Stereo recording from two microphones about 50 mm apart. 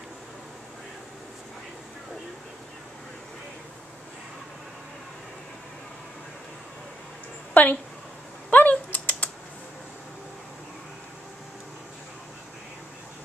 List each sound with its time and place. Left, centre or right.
7.5 s a woman's voice: left
8.5 s typing: left